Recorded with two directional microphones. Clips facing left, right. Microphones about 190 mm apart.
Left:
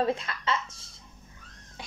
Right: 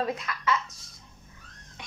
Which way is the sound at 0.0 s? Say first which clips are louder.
Left 2 dB; 30° left (ahead or behind).